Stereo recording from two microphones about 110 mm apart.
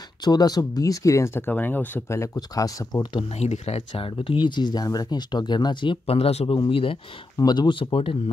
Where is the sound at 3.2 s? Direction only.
65° left (ahead or behind).